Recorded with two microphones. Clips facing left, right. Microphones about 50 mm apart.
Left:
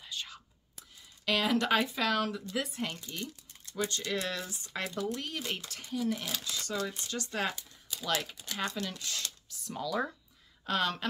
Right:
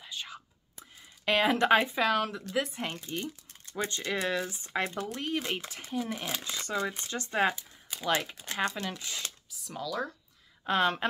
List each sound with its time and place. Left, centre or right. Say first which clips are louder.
0.0 s whispering: right 1 dB; centre
0.7 s speech: right 3 dB; right; by 2.8 s centre
2.8 s speech: right 2 dB; right
9.5 s speech: left 2 dB; centre
9.8 s speech: left 1 dB; centre
10.6 s speech: right 4 dB; right